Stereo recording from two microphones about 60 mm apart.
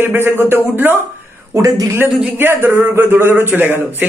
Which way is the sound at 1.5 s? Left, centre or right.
Right.